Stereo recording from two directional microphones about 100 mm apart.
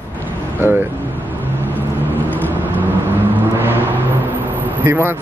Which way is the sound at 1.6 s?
20° left (ahead or behind).